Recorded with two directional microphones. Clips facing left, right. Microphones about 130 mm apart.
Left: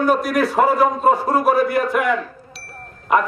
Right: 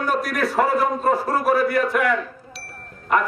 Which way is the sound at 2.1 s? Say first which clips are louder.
Left 2 dB; centre (ahead or behind).